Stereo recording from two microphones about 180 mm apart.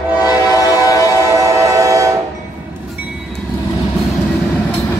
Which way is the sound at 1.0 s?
15° right (ahead or behind).